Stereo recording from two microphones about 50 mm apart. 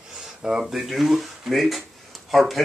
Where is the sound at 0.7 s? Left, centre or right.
Centre.